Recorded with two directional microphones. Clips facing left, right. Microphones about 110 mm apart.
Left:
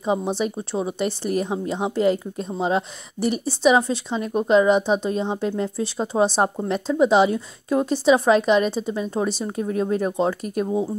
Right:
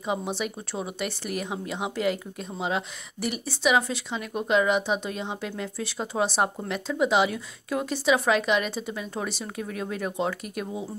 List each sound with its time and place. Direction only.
0.0 s speech: 30° left (ahead or behind)